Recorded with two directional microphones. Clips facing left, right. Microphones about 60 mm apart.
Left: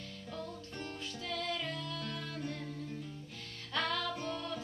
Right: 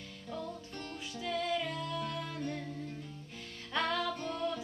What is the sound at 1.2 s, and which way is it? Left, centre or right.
Music, centre.